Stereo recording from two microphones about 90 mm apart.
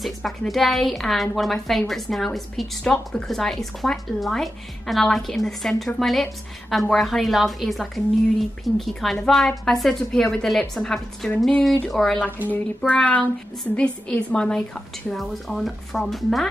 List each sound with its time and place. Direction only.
0.0 s a woman's voice: centre (ahead or behind)
12.4 s a woman's voice: 15° left (ahead or behind)